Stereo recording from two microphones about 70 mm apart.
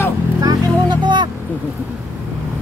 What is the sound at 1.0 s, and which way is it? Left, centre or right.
Speech, right.